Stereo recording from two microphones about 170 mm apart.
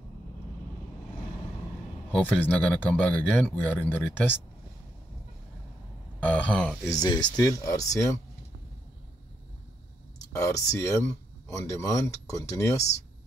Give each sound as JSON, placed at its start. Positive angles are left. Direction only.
{"t": 2.0, "sound": "speech", "side_deg": 10}
{"t": 6.2, "sound": "speech", "side_deg": 10}
{"t": 6.8, "sound": "speech", "side_deg": 20}
{"t": 10.3, "sound": "speech", "side_deg": 15}